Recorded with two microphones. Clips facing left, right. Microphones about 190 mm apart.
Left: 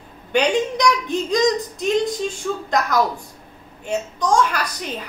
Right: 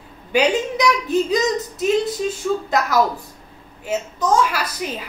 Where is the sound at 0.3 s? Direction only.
5° right (ahead or behind).